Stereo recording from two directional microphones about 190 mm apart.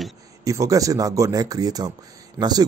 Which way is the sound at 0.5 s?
15° right (ahead or behind).